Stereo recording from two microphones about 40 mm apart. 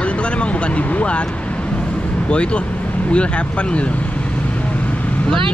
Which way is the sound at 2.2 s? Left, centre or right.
Left.